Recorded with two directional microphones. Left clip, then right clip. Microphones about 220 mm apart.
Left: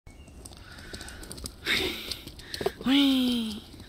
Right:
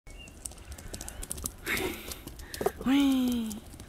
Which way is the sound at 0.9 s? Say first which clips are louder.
Even; 5° right (ahead or behind).